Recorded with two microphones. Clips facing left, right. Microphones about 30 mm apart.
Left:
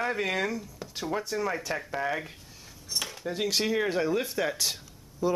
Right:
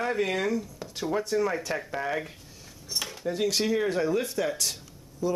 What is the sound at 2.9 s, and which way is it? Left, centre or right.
Cutlery, centre.